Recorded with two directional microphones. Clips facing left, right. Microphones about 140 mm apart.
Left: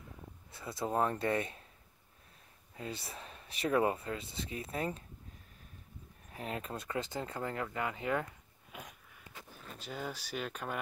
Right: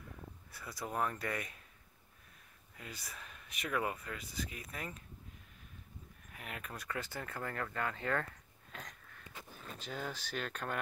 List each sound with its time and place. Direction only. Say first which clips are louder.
0.5 s speech: left 7 dB; 25° left (ahead or behind)
2.7 s speech: left 7 dB; 30° left (ahead or behind)
6.3 s speech: left 7 dB; 30° left (ahead or behind)
8.7 s wheeze: left 1 dB; 10° left (ahead or behind)
9.8 s speech: left 1 dB; 5° left (ahead or behind)